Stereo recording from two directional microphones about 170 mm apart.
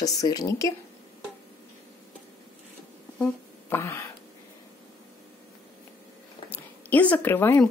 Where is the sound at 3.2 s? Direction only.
15° left (ahead or behind).